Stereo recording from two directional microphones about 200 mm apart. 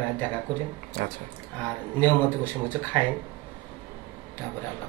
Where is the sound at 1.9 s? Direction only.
10° left (ahead or behind).